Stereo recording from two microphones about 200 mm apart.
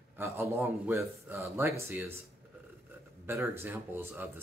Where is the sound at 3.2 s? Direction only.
10° right (ahead or behind).